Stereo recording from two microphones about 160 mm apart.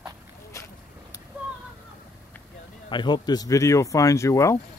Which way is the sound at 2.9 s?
30° left (ahead or behind).